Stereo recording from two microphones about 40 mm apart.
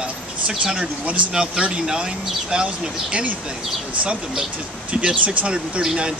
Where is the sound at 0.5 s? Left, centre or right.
Centre.